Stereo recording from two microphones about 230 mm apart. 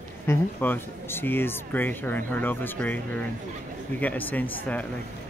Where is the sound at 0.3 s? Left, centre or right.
Centre.